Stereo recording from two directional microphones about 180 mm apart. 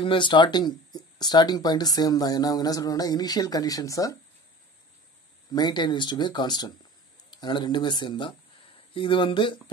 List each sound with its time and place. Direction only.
0.0 s speech: 25° left (ahead or behind)
5.5 s speech: 25° left (ahead or behind)